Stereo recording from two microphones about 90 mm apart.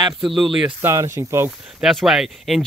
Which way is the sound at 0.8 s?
35° right (ahead or behind).